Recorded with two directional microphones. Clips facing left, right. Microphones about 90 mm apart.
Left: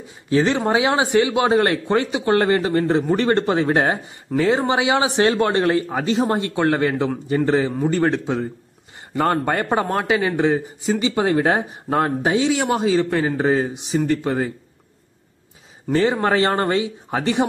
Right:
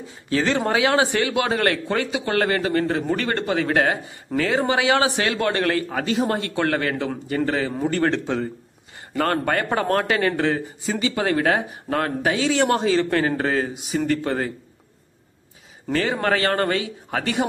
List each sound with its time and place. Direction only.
0.3 s speech: 20° left (ahead or behind)
7.9 s a man's voice: 15° left (ahead or behind)
12.5 s a man's voice: 10° left (ahead or behind)
15.9 s speech: 25° left (ahead or behind)